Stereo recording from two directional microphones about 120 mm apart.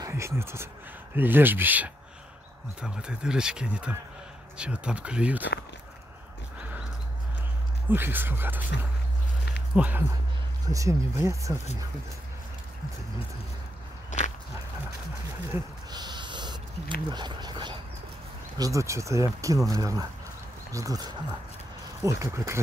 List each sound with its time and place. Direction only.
0.0 s speech: 20° right (ahead or behind)
7.9 s speech: 15° right (ahead or behind)
9.8 s speech: 10° right (ahead or behind)
10.6 s speech: 30° right (ahead or behind)
15.9 s a sound: 35° right (ahead or behind)
18.6 s speech: 25° right (ahead or behind)